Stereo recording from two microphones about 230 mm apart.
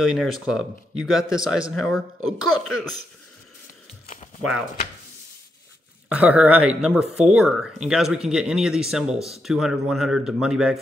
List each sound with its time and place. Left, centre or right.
0.0 s speech: centre
2.2 s a woman's voice: right
4.4 s speech: centre
6.0 s speech: centre